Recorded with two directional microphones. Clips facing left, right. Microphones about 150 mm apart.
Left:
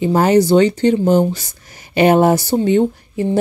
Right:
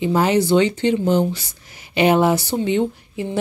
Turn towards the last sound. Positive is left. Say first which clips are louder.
# left 5 dB
turn(degrees=40)  # may be behind; listen again after turning